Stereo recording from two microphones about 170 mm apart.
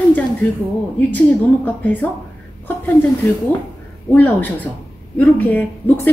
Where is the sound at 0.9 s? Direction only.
10° left (ahead or behind).